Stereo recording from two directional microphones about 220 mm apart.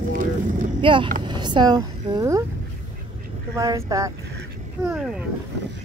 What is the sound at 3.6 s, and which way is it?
Speech, 15° right (ahead or behind).